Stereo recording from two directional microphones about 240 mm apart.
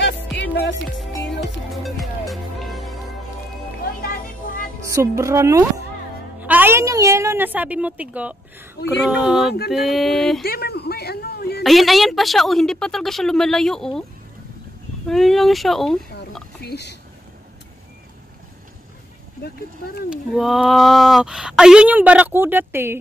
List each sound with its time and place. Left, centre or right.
0.4 s music: left
1.8 s music: centre
4.1 s music: left
4.8 s a woman's voice: centre
10.4 s speech: left
11.6 s speech: centre
15.0 s speech: centre
16.6 s speech: left
19.4 s speech: left
20.1 s speech: centre